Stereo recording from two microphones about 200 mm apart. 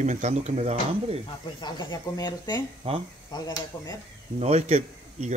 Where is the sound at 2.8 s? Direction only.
30° right (ahead or behind).